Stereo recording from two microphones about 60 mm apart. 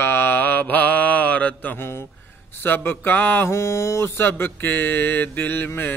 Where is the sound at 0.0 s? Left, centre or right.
Left.